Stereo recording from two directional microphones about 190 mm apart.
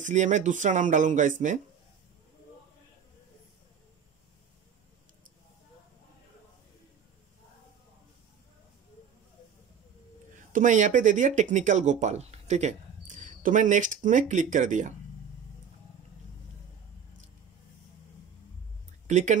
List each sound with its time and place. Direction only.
0.0 s speech: 40° right (ahead or behind)
10.5 s speech: 40° right (ahead or behind)
19.0 s speech: 40° right (ahead or behind)